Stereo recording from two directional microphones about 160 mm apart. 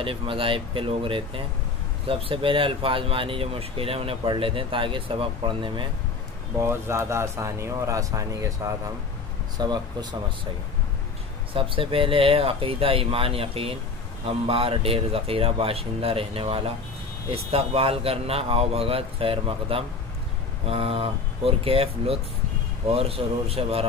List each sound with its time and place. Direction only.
0.0 s speech: 35° right (ahead or behind)
6.6 s speech: 15° right (ahead or behind)
11.5 s speech: 35° right (ahead or behind)